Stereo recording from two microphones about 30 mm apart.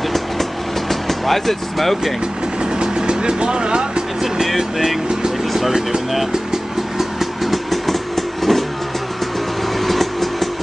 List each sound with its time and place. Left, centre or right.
0.1 s vehicle: centre
2.6 s vehicle: right
4.6 s speech: centre
5.4 s vehicle: centre
5.7 s speech: centre
6.5 s vehicle: centre
9.8 s vehicle: centre